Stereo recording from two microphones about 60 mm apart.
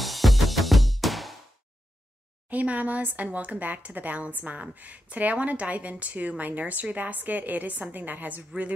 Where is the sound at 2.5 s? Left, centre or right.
Right.